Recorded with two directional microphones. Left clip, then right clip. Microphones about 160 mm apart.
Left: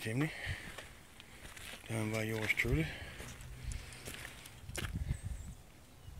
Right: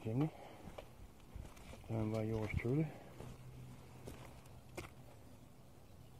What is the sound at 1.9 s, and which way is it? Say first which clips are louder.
Speech: left 2 dB; 15° left (ahead or behind).